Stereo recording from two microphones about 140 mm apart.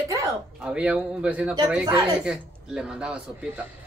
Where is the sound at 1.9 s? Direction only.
30° right (ahead or behind).